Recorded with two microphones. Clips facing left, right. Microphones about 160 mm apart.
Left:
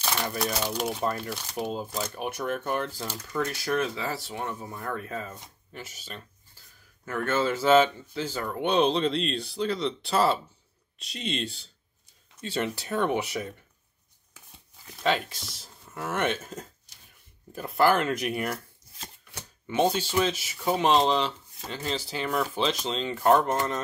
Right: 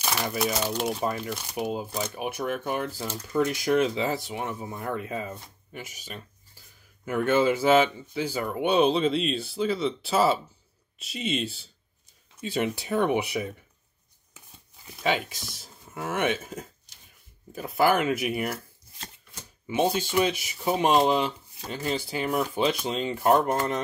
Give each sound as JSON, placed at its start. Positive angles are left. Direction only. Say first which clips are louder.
{"t": 0.0, "sound": "speech", "louder": "right 2 dB", "side_deg": -10}
{"t": 14.9, "sound": "speech", "louder": "even", "side_deg": -5}